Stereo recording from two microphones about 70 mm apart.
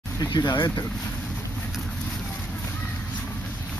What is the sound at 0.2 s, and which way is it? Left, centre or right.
Speech, left.